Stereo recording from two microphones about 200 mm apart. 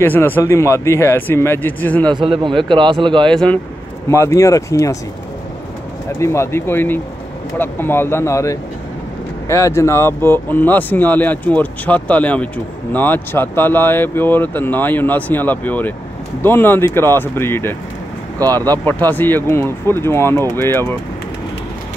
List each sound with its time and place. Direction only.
0.0 s speech: 10° left (ahead or behind)
2.0 s a man's voice: 25° right (ahead or behind)
3.3 s speech: 5° left (ahead or behind)
6.1 s speech: 15° left (ahead or behind)